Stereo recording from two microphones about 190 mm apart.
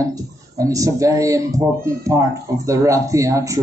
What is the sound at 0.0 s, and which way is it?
Speech, 15° right (ahead or behind).